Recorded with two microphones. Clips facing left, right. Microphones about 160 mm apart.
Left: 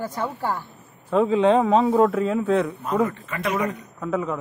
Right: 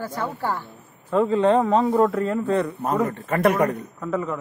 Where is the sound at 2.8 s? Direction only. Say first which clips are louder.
Even; 50° right (ahead or behind).